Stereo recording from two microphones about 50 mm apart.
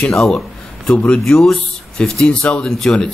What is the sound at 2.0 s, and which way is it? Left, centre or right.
Speech, centre.